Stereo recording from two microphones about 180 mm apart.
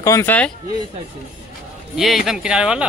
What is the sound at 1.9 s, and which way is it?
Speech, centre (ahead or behind).